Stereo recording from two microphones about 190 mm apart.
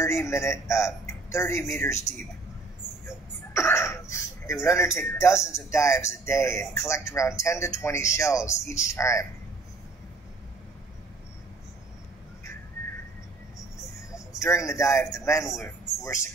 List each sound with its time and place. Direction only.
0.0 s speech: 15° left (ahead or behind)
3.1 s speech: 15° left (ahead or behind)
14.4 s speech: 15° left (ahead or behind)